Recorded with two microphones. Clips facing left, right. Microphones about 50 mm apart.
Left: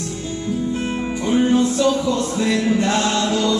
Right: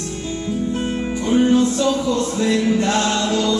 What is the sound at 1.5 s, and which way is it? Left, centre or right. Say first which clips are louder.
Music: even; centre.